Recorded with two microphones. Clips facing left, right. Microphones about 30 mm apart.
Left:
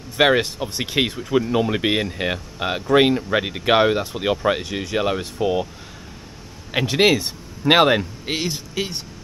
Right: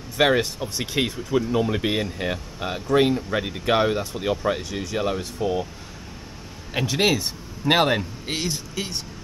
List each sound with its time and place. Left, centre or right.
0.2 s speech: left
6.7 s speech: left